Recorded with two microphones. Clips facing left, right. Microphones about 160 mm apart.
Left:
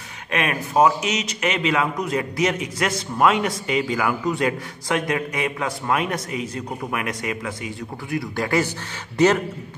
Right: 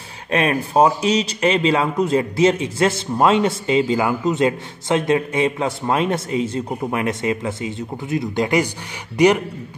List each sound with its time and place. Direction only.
0.3 s a man's voice: 35° right (ahead or behind); by 9.3 s 15° right (ahead or behind)